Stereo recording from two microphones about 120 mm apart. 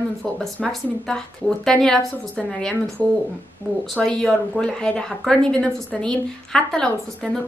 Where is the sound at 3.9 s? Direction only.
5° left (ahead or behind).